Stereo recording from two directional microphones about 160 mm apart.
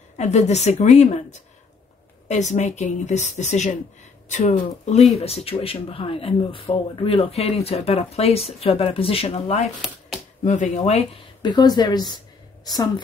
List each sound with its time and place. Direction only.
0.2 s speech: 45° left (ahead or behind)
9.8 s a sound: centre (ahead or behind)
10.4 s speech: 50° left (ahead or behind)
11.4 s a woman's voice: 25° left (ahead or behind)